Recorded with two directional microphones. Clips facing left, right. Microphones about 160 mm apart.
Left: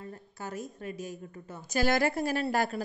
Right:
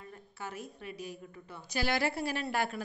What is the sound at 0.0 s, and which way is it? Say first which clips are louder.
A woman's voice: left 3 dB; 40° left (ahead or behind).